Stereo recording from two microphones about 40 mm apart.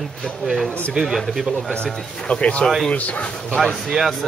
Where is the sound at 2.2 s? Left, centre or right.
Left.